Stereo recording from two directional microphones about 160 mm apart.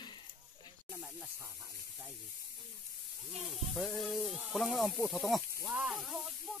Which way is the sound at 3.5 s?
Centre (ahead or behind).